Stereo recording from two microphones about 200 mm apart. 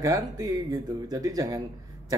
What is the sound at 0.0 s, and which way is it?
Speech, 20° right (ahead or behind).